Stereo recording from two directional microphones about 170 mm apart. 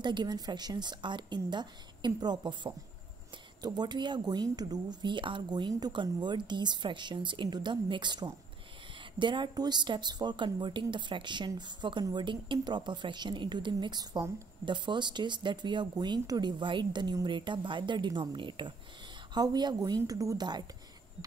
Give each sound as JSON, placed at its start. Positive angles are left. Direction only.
{"t": 0.0, "sound": "a woman's voice", "side_deg": -25}